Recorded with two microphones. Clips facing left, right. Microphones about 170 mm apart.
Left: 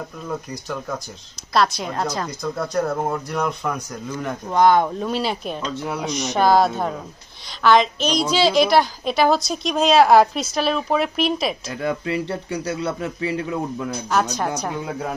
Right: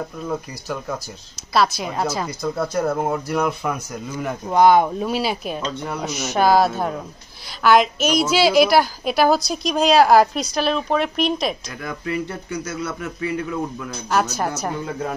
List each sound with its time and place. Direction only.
0.3 s a woman's voice: 5° right (ahead or behind)
11.7 s speech: 30° left (ahead or behind)
14.1 s a woman's voice: 5° right (ahead or behind)